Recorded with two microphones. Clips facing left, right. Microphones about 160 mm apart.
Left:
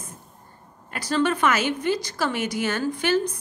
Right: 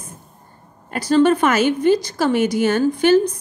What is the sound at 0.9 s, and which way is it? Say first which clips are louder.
A woman's voice: right 8 dB; 45° right (ahead or behind).